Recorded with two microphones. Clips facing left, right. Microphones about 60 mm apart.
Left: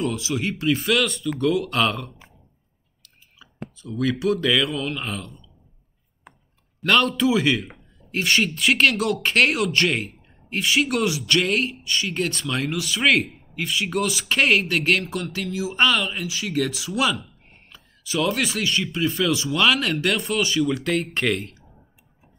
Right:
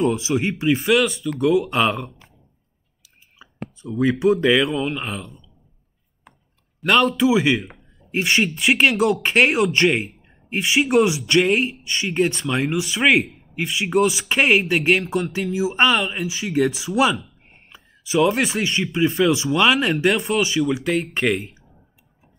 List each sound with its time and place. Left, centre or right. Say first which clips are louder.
0.0 s speech: right 5 dB; right; by 1.7 s centre
1.7 s speech: right 2 dB; centre
3.3 s a sound: right 3 dB; right
3.9 s speech: right 5 dB; centre
6.8 s speech: right 2 dB; centre
10.6 s speech: right 5 dB; right
16.3 s speech: right 5 dB; right